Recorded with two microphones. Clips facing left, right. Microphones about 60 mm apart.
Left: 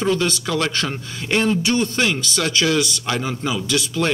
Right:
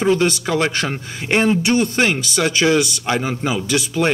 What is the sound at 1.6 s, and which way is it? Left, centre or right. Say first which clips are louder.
Speech: right 3 dB; centre.